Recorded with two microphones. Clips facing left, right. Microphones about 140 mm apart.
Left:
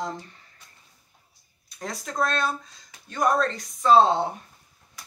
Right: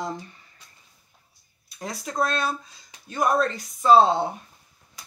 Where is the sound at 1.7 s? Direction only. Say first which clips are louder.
Right 1 dB; 10° right (ahead or behind).